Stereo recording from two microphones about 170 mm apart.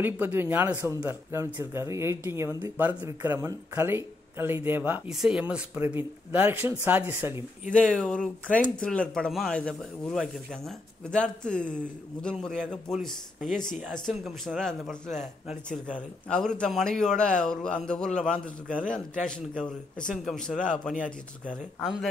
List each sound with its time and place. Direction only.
0.0 s speech: 10° right (ahead or behind)
7.7 s a man's voice: 5° left (ahead or behind)